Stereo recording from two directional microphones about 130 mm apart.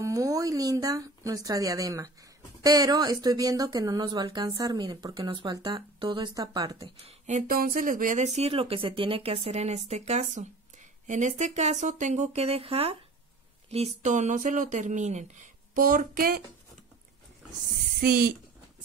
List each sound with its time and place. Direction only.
0.0 s a woman's voice: 25° right (ahead or behind)
7.1 s speech: 65° right (ahead or behind); by 8.3 s 90° right
8.4 s speech: 50° right (ahead or behind); by 16.3 s 90° right